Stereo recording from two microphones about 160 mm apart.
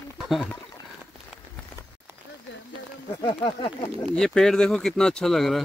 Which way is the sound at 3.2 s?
25° left (ahead or behind).